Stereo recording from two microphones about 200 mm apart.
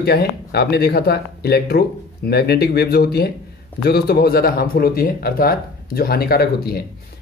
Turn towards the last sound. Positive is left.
turn(degrees=50)  # may be behind; listen again after turning